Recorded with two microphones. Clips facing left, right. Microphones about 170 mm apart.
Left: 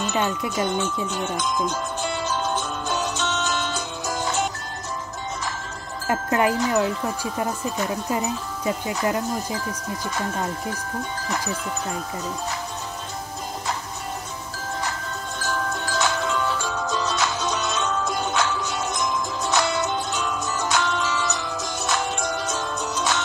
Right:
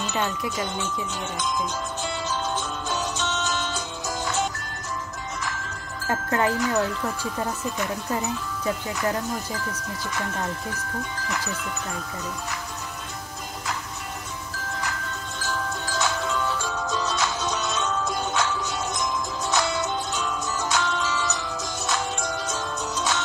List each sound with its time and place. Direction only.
0.1 s wind chime: 15° left (ahead or behind)
0.6 s music: 55° left (ahead or behind)
6.0 s wind chime: 20° left (ahead or behind)
8.9 s music: 25° left (ahead or behind)
15.4 s music: 60° left (ahead or behind)